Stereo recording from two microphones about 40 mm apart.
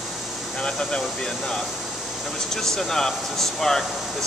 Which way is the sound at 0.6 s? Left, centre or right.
Left.